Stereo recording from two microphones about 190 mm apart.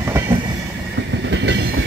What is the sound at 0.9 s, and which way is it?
Train, 70° right (ahead or behind).